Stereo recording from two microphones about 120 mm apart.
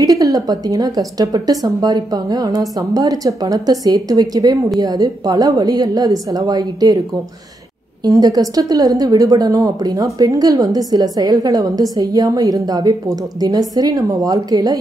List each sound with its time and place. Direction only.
0.0 s a woman's voice: 30° right (ahead or behind)
8.0 s a woman's voice: 30° right (ahead or behind)